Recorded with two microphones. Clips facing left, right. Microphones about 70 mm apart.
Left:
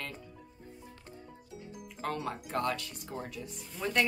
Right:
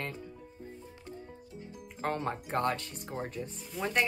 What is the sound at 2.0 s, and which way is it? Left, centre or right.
Speech, right.